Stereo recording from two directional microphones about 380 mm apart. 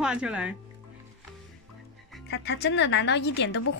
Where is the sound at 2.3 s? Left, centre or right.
Left.